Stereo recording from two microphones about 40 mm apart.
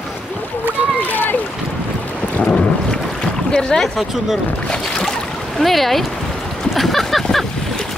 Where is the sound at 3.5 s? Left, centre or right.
Centre.